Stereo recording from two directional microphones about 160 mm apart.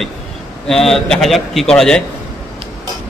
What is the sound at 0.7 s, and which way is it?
A man's voice, 5° left (ahead or behind).